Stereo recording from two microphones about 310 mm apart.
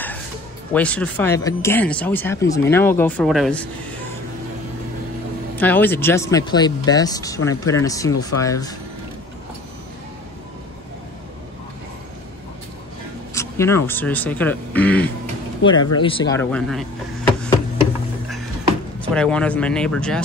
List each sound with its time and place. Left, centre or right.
0.7 s speech: centre
5.6 s speech: centre
13.3 s a sound: centre
13.8 s speech: centre
18.9 s speech: centre